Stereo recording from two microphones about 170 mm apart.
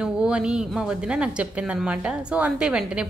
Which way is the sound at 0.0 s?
5° right (ahead or behind).